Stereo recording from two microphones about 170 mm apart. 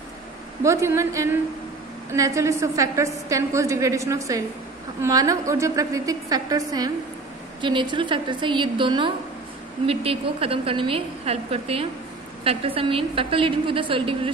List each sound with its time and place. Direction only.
0.7 s a woman's voice: 15° right (ahead or behind)